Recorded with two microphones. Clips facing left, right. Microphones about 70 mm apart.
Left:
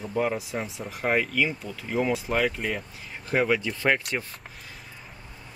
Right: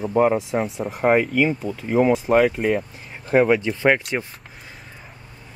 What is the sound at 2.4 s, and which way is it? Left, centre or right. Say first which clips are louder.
Speech: right 8 dB; centre.